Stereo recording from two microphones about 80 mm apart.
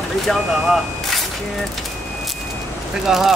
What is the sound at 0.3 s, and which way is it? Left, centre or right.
Speech, centre.